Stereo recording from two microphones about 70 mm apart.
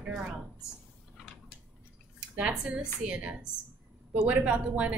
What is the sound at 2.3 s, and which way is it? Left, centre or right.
A woman's voice, centre.